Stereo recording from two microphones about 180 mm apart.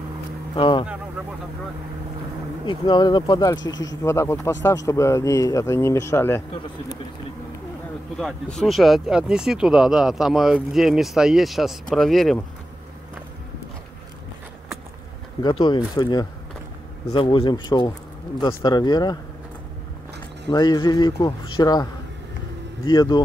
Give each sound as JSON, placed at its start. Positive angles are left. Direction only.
{"t": 0.6, "sound": "a man's voice", "side_deg": 25}
{"t": 2.6, "sound": "a man's voice", "side_deg": 25}
{"t": 8.2, "sound": "speech", "side_deg": 5}
{"t": 15.4, "sound": "a man's voice", "side_deg": 25}
{"t": 20.4, "sound": "a man's voice", "side_deg": 25}
{"t": 22.8, "sound": "a man's voice", "side_deg": 25}